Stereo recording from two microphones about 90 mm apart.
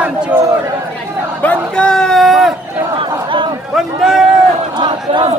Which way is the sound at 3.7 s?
5° right (ahead or behind).